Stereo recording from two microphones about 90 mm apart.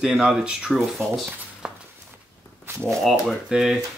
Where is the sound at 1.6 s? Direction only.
10° right (ahead or behind).